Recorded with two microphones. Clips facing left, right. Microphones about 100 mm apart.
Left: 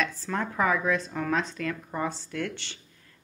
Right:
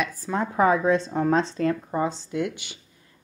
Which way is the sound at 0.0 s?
15° right (ahead or behind).